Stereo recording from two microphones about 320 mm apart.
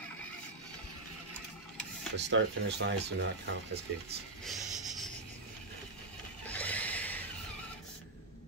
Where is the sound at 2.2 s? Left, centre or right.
Right.